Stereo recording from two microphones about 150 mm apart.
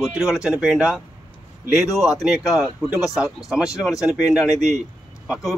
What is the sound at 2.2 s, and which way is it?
A man's voice, 5° right (ahead or behind).